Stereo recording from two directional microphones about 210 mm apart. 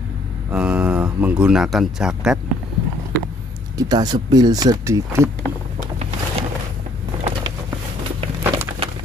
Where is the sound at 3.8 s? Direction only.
20° right (ahead or behind).